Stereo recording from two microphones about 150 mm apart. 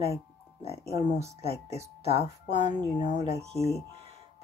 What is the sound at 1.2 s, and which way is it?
Speech, 45° right (ahead or behind).